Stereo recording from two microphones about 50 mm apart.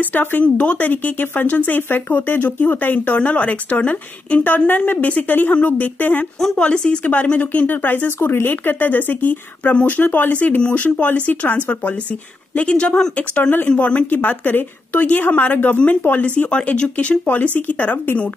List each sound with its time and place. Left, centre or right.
0.1 s speech: left
3.2 s speech: left
6.5 s speech: left
7.1 s speech: left
8.2 s speech: left
12.5 s speech: left
13.4 s speech: left
13.7 s speech: left